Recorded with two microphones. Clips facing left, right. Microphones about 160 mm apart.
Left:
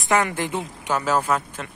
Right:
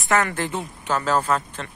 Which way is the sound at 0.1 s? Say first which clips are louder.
Left 1 dB; 15° left (ahead or behind).